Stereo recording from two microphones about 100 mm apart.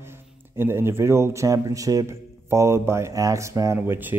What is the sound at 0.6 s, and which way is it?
Speech, 25° right (ahead or behind).